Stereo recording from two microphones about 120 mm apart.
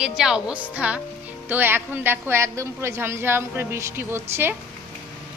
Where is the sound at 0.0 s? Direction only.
5° right (ahead or behind).